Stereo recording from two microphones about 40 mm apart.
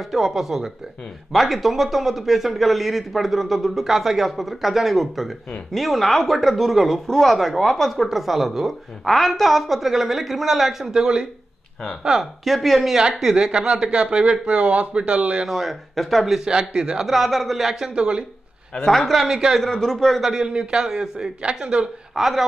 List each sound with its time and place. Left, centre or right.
0.1 s a man's voice: centre
12.4 s speech: centre
13.5 s speech: right
15.4 s speech: centre
16.3 s speech: centre
17.0 s speech: centre
17.9 s speech: right
18.9 s speech: centre
19.1 s speech: centre
19.9 s speech: centre
20.2 s a man's voice: centre
20.4 s speech: right
20.8 s a man's voice: centre
22.1 s a woman's voice: centre